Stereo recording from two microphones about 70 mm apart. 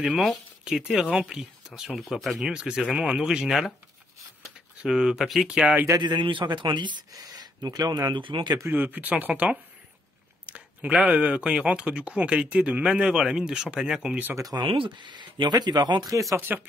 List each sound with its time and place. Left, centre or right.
0.0 s speech: centre
1.8 s speech: centre
4.8 s speech: centre
5.9 s speech: right
8.6 s speech: right; by 14.1 s centre
14.5 s speech: right
16.1 s speech: right
16.3 s speech: right